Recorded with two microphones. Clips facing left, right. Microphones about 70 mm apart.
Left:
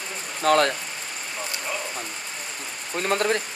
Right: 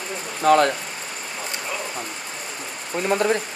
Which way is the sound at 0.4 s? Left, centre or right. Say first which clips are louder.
Right 3 dB; right.